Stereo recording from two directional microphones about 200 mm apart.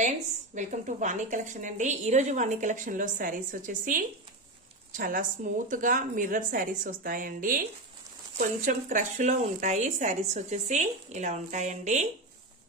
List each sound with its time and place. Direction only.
0.6 s a woman's voice: 40° right (ahead or behind)